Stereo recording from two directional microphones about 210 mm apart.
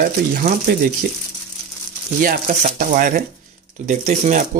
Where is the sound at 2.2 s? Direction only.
40° right (ahead or behind).